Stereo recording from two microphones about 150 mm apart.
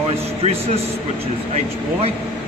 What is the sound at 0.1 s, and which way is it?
Speech, 45° right (ahead or behind).